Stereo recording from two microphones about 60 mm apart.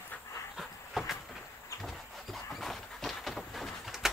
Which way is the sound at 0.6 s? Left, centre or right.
Centre.